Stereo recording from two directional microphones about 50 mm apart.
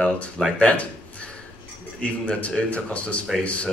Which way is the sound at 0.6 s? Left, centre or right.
Left.